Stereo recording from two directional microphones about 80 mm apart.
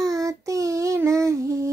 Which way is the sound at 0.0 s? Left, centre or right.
Right.